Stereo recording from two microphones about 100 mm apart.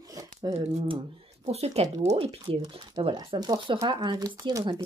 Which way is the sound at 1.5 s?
90° right.